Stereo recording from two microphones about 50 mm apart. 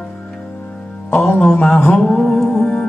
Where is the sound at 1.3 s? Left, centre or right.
Left.